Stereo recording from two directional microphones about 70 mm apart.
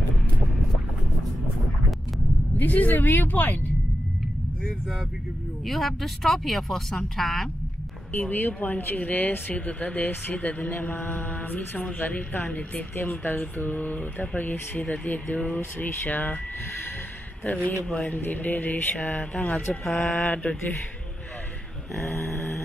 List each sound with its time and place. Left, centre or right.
2.5 s speech: left
5.7 s speech: centre
8.1 s speech: left
17.8 s speech: centre
18.1 s speech: left; by 20.2 s centre